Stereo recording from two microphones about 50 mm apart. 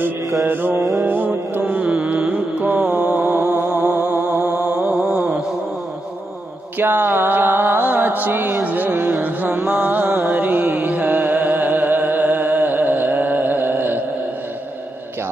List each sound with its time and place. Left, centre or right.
0.5 s mantra: right
0.7 s music: right
1.0 s music: right
1.9 s music: right
3.3 s music: right
3.6 s music: right
6.8 s music: right
9.7 s music: right